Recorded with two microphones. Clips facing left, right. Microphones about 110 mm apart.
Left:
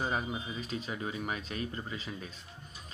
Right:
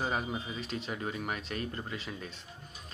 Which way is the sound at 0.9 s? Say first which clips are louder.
Right 1 dB; 45° right (ahead or behind).